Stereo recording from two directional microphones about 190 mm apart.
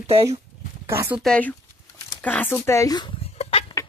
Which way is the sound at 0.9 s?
10° right (ahead or behind).